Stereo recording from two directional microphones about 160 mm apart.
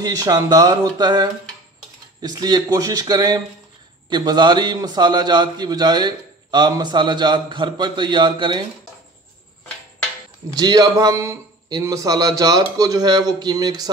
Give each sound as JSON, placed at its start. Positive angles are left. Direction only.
{"t": 0.0, "sound": "a man's voice", "side_deg": -25}
{"t": 10.5, "sound": "a man's voice", "side_deg": -25}